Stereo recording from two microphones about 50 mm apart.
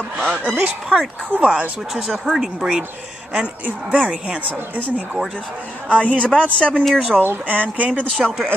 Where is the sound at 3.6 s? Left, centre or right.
Right.